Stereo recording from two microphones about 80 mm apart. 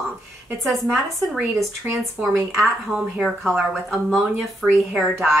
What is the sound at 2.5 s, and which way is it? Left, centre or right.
A woman's voice, centre.